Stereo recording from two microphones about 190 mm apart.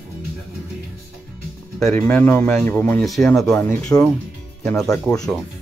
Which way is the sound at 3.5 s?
15° left (ahead or behind).